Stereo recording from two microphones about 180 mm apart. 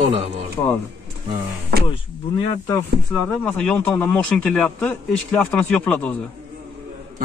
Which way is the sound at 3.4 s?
5° left (ahead or behind).